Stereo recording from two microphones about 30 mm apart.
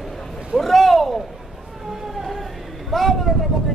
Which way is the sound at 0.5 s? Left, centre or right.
Centre.